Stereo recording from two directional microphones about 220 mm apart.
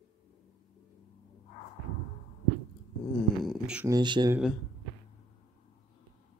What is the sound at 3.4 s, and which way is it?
Beatboxing, 5° right (ahead or behind).